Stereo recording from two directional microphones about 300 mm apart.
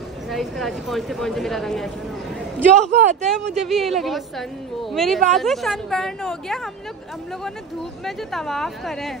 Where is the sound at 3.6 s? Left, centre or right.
Centre.